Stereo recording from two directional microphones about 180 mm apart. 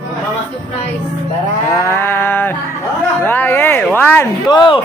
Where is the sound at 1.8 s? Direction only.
15° left (ahead or behind).